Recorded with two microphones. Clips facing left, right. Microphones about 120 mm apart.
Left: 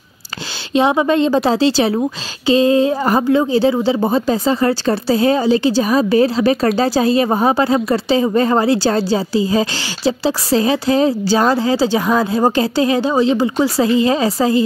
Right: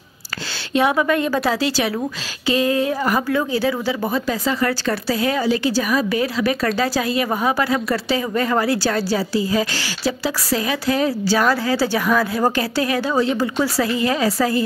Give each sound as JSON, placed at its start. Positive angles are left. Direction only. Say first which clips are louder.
{"t": 0.7, "sound": "a woman's voice", "louder": "left 4 dB", "side_deg": 25}